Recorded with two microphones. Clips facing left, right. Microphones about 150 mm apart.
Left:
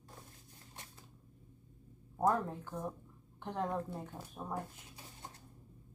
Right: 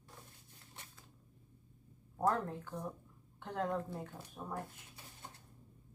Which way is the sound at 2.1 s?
15° left (ahead or behind).